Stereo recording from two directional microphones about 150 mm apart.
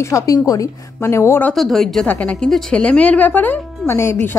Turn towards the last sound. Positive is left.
turn(degrees=15)  # may be behind; listen again after turning